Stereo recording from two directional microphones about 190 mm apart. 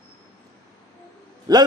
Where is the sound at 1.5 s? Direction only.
20° right (ahead or behind).